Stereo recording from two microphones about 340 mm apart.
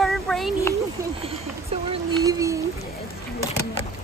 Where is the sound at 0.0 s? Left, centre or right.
Centre.